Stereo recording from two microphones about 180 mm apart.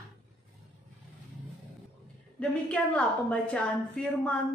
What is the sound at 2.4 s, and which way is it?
A woman's voice, 5° left (ahead or behind).